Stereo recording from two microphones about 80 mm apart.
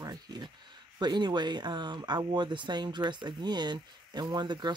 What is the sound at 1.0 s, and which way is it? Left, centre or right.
Speech, right.